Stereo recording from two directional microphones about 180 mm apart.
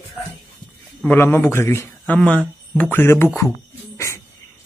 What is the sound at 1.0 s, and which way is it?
A man's voice, 10° left (ahead or behind).